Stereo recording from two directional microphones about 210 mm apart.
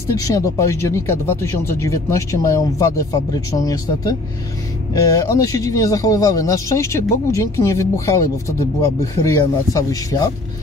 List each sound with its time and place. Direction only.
0.1 s a man's voice: 15° left (ahead or behind)